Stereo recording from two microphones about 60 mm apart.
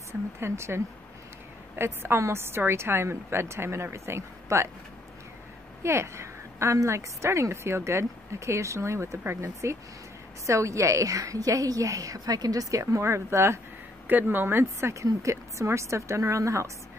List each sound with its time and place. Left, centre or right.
0.4 s a woman's voice: right
5.8 s a woman's voice: right
12.9 s a woman's voice: right
14.0 s a woman's voice: right